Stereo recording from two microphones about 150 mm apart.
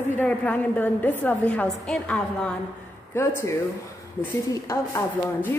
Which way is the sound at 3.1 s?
15° left (ahead or behind).